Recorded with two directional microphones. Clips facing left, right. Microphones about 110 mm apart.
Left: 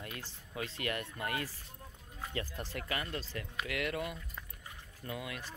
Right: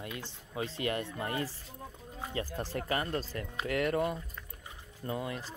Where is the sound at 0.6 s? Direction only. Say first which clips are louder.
Right 4 dB; 25° right (ahead or behind).